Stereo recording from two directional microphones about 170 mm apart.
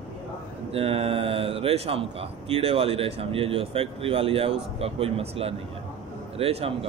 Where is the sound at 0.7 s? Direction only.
35° right (ahead or behind).